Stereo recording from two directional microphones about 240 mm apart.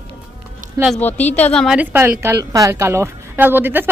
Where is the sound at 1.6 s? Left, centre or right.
Centre.